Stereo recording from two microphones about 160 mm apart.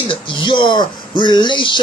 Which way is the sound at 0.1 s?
30° left (ahead or behind).